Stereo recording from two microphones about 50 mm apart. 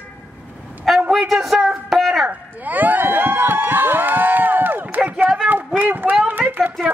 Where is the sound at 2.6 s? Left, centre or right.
Right.